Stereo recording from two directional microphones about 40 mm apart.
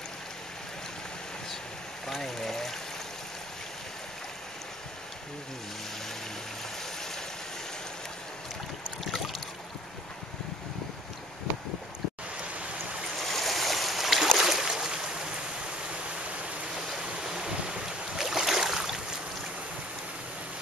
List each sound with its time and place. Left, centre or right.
2.0 s a sound: centre
13.2 s boat: centre
14.7 s boat: centre
17.2 s boat: centre